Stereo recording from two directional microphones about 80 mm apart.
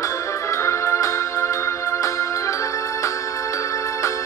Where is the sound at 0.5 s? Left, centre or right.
Left.